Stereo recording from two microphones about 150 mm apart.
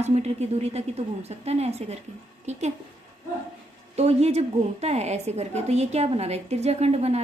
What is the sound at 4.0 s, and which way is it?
A woman's voice, 45° right (ahead or behind).